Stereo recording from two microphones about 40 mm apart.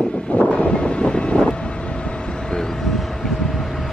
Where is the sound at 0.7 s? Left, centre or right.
Left.